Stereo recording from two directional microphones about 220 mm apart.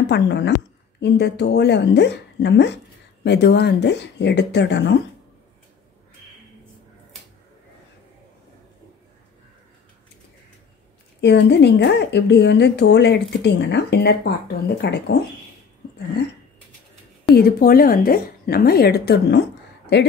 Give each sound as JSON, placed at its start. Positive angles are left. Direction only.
{"t": 0.1, "sound": "speech", "side_deg": 50}
{"t": 11.1, "sound": "speech", "side_deg": 50}
{"t": 17.4, "sound": "speech", "side_deg": 40}